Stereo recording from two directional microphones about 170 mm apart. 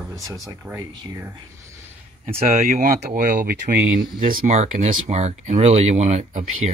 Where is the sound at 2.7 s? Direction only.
55° right (ahead or behind).